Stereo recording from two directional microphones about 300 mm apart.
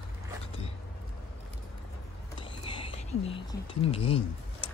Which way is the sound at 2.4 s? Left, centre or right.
Centre.